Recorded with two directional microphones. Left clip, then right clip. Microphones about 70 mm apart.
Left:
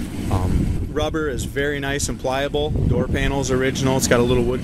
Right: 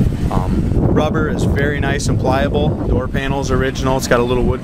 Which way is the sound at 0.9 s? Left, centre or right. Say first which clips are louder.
Right 3 dB; centre.